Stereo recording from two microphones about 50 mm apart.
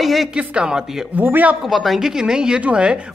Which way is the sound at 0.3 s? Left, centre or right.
Right.